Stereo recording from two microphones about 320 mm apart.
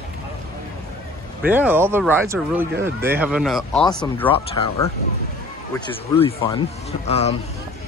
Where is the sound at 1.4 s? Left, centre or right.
Centre.